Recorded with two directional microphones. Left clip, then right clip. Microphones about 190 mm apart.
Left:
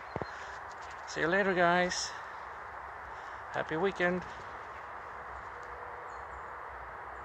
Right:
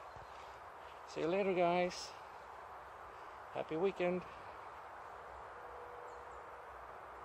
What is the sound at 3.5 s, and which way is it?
Speech, 5° right (ahead or behind).